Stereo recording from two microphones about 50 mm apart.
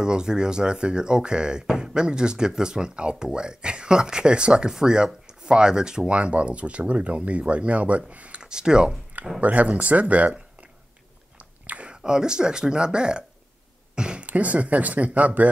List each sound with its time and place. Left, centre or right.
0.0 s speech: centre
8.4 s speech: centre
9.4 s speech: right
11.3 s biting: right
11.9 s speech: centre
13.9 s a sound: centre
14.2 s speech: right